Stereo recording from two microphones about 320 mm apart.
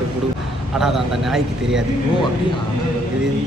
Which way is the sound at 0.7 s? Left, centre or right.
Centre.